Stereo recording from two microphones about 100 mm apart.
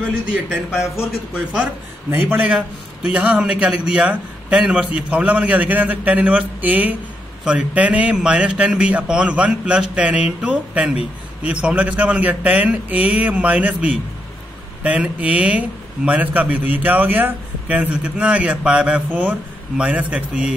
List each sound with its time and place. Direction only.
0.3 s a man's voice: 15° right (ahead or behind)
2.0 s a man's voice: 20° right (ahead or behind)
2.4 s a man's voice: 10° right (ahead or behind)